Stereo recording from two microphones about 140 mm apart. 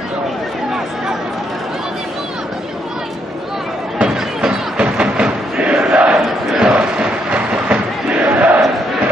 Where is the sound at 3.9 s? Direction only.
5° right (ahead or behind).